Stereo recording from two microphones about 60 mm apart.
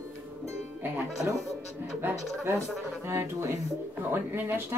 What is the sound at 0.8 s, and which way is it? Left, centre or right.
Speech, right.